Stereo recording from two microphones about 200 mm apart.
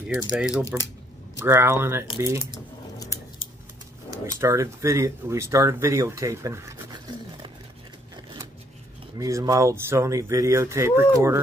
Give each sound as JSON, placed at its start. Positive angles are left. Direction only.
{"t": 0.1, "sound": "speech", "side_deg": -5}
{"t": 4.1, "sound": "speech", "side_deg": -15}
{"t": 9.2, "sound": "speech", "side_deg": -15}